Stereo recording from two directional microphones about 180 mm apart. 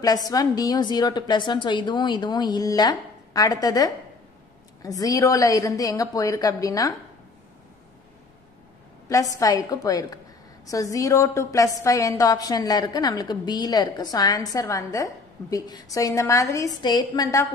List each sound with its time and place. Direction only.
0.0 s a woman's voice: 20° left (ahead or behind)
9.1 s a woman's voice: 20° left (ahead or behind)